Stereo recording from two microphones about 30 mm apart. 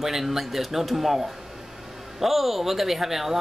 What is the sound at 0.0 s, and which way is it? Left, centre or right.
Speech, centre.